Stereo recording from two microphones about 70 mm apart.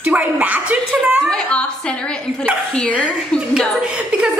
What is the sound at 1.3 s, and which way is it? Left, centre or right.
A woman's voice, centre.